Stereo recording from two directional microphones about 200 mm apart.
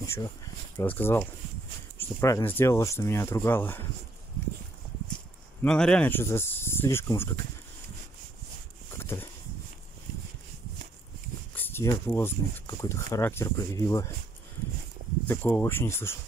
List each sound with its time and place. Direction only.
0.0 s speech: 15° left (ahead or behind)
5.6 s speech: 5° left (ahead or behind)
8.9 s a sound: 10° left (ahead or behind)
11.5 s speech: 10° left (ahead or behind)
15.2 s speech: 10° left (ahead or behind)